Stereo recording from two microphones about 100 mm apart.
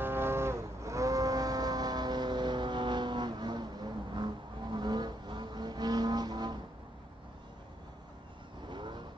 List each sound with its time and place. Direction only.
0.0 s vehicle: 25° right (ahead or behind); by 6.6 s 45° right (ahead or behind)
8.6 s vehicle: 50° right (ahead or behind)